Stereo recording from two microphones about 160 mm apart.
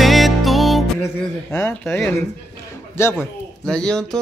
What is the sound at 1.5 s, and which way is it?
Speech, 15° left (ahead or behind).